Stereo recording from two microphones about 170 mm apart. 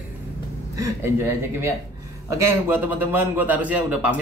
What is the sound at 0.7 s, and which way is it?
A man's voice, 15° right (ahead or behind).